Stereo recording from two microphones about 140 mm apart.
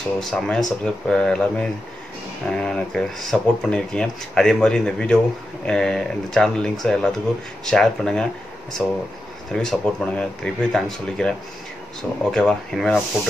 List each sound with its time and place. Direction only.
0.2 s speech: 5° left (ahead or behind)